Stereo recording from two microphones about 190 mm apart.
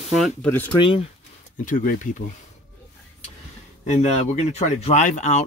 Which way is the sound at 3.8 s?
35° left (ahead or behind).